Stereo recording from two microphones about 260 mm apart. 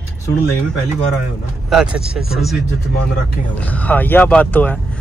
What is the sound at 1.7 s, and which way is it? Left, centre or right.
Speech, centre.